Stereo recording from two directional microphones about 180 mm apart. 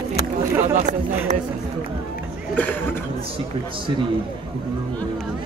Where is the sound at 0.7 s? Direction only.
45° right (ahead or behind).